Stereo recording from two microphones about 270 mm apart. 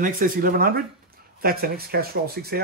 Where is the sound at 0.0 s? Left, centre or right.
Right.